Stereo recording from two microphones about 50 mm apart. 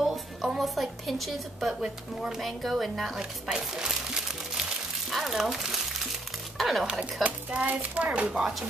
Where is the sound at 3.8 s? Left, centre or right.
Centre.